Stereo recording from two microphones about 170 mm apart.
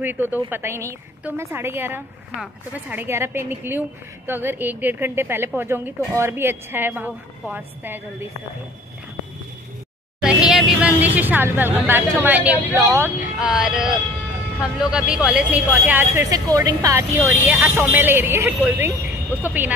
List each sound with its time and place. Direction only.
0.0 s a woman's voice: 10° right (ahead or behind)
10.2 s a sound: 5° right (ahead or behind)
12.7 s a woman's voice: 15° right (ahead or behind)
13.4 s a woman's voice: 5° right (ahead or behind)